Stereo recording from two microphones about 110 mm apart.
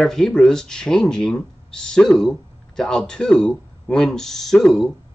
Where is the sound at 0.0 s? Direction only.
5° left (ahead or behind).